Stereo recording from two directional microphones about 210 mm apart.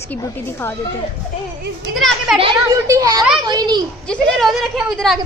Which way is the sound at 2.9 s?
15° right (ahead or behind).